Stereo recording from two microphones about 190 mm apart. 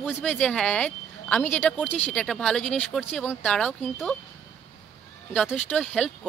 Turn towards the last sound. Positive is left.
turn(degrees=5)  # may be behind; listen again after turning